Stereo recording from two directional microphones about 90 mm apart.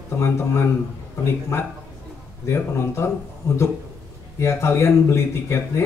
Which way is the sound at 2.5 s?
30° left (ahead or behind).